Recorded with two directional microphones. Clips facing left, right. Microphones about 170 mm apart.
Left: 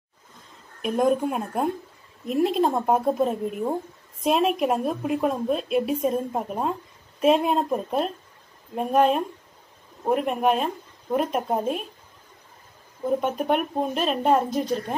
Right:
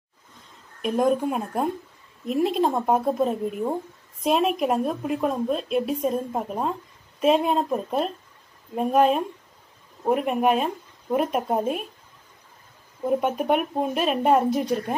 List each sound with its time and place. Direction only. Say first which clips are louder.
0.8 s speech: even; centre (ahead or behind)
13.0 s a woman's voice: right 1 dB; 5° right (ahead or behind)